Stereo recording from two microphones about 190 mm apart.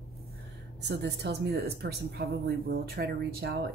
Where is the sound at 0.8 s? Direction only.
60° right (ahead or behind).